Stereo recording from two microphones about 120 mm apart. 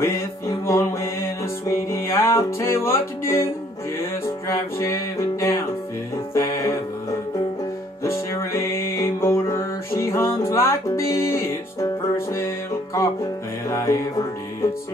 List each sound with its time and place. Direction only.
0.0 s music: 25° left (ahead or behind)
8.0 s music: 25° left (ahead or behind)